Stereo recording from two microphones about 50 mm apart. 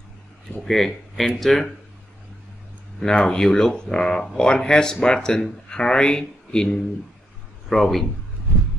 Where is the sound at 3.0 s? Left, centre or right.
Centre.